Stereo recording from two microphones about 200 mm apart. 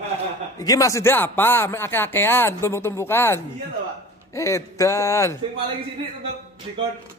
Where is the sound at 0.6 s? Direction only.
15° left (ahead or behind).